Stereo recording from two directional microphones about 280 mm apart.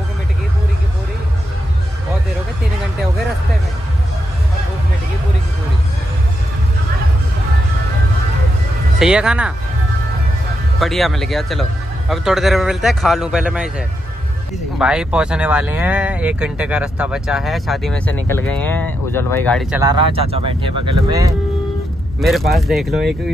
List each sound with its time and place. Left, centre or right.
9.0 s speech: centre
10.8 s speech: centre
19.8 s speech: centre
22.5 s speech: centre